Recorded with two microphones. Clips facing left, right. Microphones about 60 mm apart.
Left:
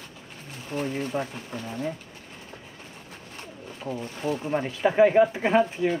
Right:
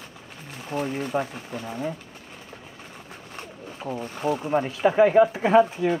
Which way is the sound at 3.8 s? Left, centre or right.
Right.